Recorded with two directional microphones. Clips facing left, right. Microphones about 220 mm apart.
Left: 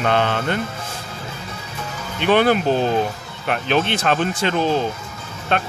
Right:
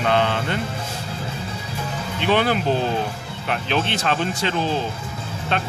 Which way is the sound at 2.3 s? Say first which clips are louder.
Left 4 dB; 50° left (ahead or behind).